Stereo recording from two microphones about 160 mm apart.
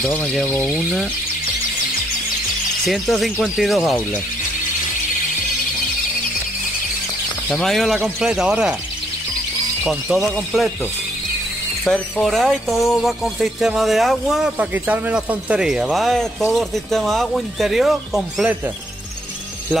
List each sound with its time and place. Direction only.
0.0 s speech: 5° left (ahead or behind)
2.9 s speech: centre (ahead or behind)
7.4 s speech: 5° left (ahead or behind)
9.8 s speech: centre (ahead or behind)
11.8 s speech: 5° left (ahead or behind)